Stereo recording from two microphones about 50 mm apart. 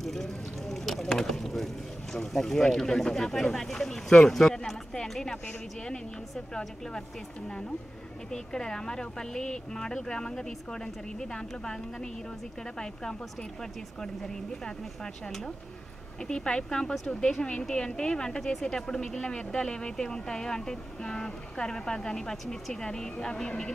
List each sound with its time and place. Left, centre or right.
0.0 s a sound: centre
2.1 s speech: centre
6.3 s speech: centre
8.3 s speech: centre